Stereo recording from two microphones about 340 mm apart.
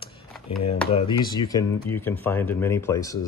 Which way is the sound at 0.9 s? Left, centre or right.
Centre.